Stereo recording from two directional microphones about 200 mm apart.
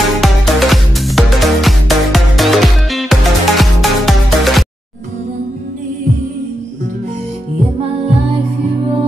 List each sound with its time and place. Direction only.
0.2 s music: centre (ahead or behind)